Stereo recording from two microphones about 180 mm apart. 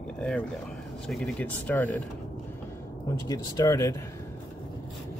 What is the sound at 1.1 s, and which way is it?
Speech, 5° left (ahead or behind).